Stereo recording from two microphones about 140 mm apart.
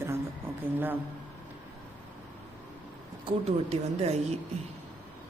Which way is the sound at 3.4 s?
50° right (ahead or behind).